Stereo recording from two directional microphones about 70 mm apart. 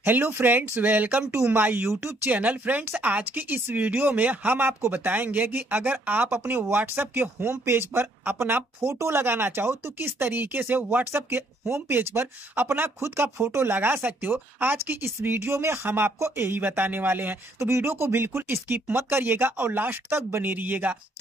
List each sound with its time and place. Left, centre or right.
0.0 s speech: right
1.9 s speech: right
2.2 s speech: right